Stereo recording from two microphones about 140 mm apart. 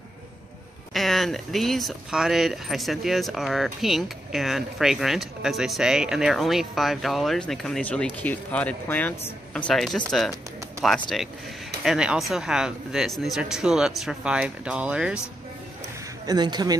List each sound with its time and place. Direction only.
0.9 s speech: centre (ahead or behind)
16.3 s speech: 30° right (ahead or behind)